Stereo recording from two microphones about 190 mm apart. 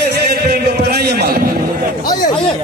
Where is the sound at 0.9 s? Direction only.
55° right (ahead or behind).